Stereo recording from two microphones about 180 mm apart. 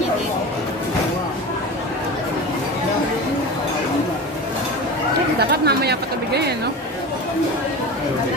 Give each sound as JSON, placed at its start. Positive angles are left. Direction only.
{"t": 5.4, "sound": "speech", "side_deg": -65}